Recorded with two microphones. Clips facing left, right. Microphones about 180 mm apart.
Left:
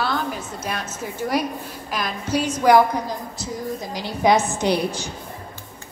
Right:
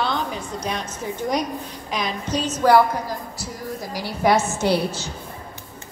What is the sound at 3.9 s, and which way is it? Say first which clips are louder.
A woman's voice: left 1 dB; 20° left (ahead or behind).